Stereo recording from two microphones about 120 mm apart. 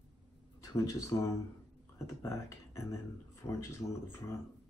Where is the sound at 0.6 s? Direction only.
25° left (ahead or behind).